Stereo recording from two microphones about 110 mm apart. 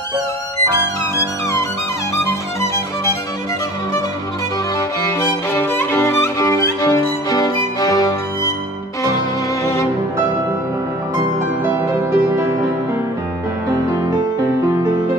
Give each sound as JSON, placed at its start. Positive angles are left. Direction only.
{"t": 4.7, "sound": "violin", "side_deg": 20}
{"t": 11.6, "sound": "music", "side_deg": -20}